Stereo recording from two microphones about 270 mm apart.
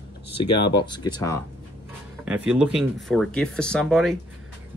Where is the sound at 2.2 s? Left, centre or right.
Centre.